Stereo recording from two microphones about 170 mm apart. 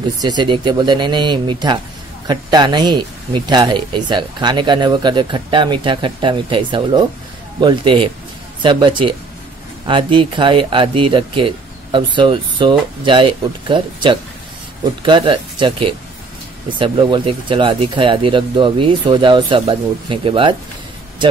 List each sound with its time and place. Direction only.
0.2 s speech: 25° right (ahead or behind)